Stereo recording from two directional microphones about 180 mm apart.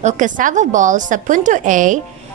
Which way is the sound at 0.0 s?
45° right (ahead or behind).